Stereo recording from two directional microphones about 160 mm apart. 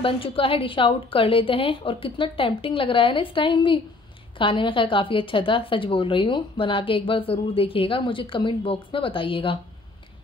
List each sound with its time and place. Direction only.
0.0 s a woman's voice: 35° left (ahead or behind)